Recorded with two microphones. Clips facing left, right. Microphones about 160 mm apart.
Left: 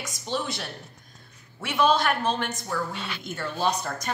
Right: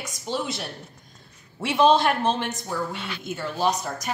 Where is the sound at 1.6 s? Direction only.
30° right (ahead or behind).